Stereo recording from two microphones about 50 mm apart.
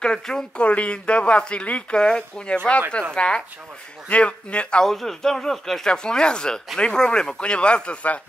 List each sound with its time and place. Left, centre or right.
0.0 s speech: centre
4.8 s speech: centre; by 8.2 s left